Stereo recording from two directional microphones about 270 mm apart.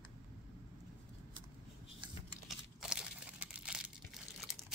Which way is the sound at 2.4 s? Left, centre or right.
Centre.